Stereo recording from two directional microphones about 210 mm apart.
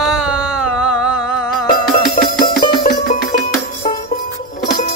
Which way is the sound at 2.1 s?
45° left (ahead or behind).